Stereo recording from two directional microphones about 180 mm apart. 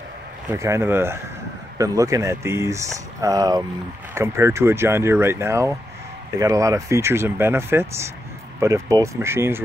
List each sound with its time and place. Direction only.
0.5 s speech: 15° right (ahead or behind)